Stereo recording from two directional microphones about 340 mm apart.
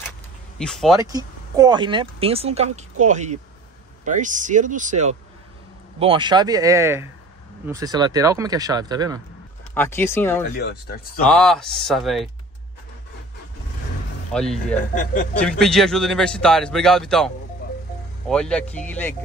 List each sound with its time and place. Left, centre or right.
0.6 s speech: centre
0.9 s speech: centre
9.8 s speech: centre
14.3 s speech: centre
18.3 s speech: centre